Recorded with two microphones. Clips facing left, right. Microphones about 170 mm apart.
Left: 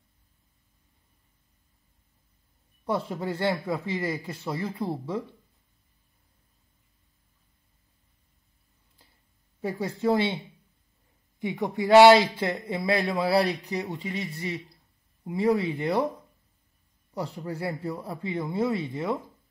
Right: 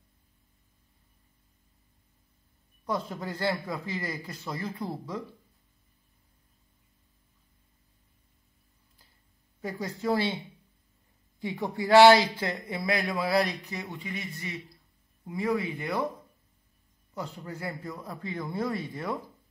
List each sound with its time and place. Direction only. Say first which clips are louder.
2.8 s a man's voice: left 3 dB; 30° left (ahead or behind)
9.6 s a man's voice: left 5 dB; 30° left (ahead or behind)
17.1 s a man's voice: left 5 dB; 35° left (ahead or behind)